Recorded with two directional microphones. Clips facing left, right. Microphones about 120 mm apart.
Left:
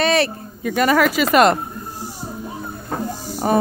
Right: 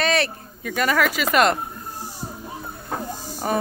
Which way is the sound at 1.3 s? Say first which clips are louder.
Left 4 dB; 40° left (ahead or behind).